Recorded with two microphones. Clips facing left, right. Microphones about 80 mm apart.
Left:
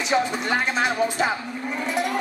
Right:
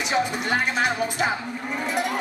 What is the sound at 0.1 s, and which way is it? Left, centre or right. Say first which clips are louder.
Speech: left 2 dB; centre.